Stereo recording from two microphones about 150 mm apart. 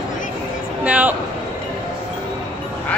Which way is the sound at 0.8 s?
10° right (ahead or behind).